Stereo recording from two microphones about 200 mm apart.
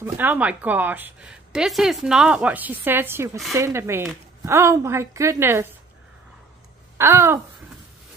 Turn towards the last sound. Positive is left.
turn(degrees=-15)  # may be behind; listen again after turning